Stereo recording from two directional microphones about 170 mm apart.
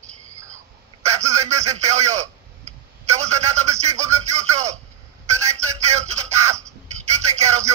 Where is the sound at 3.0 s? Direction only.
40° right (ahead or behind).